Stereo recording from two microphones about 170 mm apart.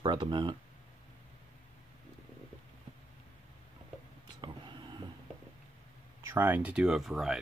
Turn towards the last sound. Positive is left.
turn(degrees=0)  # may be behind; listen again after turning